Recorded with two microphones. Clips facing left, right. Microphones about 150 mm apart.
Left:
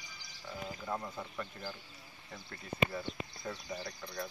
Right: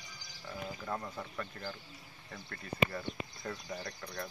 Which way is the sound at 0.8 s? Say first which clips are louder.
Left 1 dB; centre (ahead or behind).